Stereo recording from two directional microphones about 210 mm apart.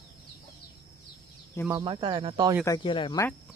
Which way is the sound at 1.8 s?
25° right (ahead or behind).